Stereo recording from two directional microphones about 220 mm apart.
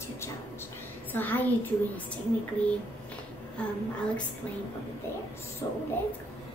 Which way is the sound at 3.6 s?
5° left (ahead or behind).